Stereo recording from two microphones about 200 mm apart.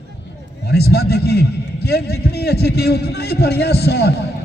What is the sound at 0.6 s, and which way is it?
A man's voice, 55° left (ahead or behind).